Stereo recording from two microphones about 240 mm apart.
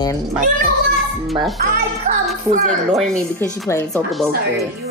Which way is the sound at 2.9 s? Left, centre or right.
Centre.